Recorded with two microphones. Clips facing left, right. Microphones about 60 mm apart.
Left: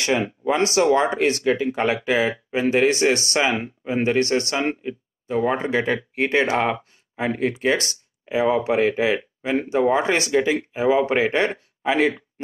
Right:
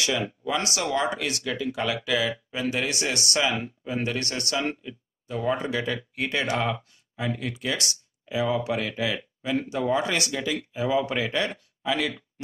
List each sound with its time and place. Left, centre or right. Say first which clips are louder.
0.0 s speech: left 5 dB; left